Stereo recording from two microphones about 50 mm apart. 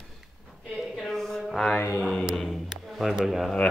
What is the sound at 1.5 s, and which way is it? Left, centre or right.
Mantra, centre.